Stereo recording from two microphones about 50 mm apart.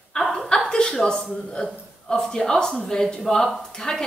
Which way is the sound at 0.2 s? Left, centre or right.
Centre.